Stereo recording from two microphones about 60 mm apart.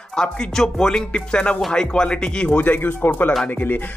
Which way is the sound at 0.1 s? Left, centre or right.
Centre.